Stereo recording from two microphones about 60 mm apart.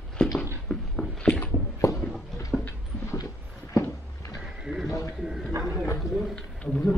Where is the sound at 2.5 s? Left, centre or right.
Centre.